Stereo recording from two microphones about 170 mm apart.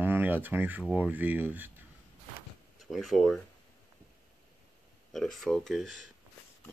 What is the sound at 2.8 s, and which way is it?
Speech, centre (ahead or behind).